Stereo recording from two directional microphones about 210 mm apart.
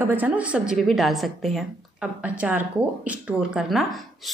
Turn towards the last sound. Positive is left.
turn(degrees=-5)  # may be behind; listen again after turning